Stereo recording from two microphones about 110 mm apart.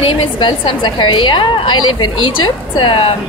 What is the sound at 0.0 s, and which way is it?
A woman's voice, 50° left (ahead or behind).